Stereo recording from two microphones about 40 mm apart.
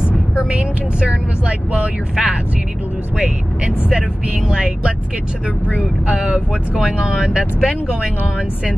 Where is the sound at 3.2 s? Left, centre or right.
Right.